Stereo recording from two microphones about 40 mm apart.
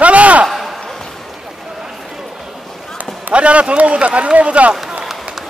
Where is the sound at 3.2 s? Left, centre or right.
Right.